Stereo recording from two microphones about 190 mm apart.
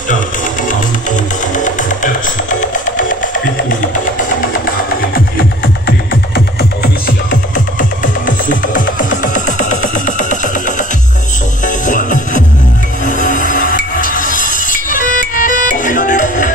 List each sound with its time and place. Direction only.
1.5 s music: 40° left (ahead or behind)
5.9 s music: 50° left (ahead or behind)
11.6 s music: 40° left (ahead or behind)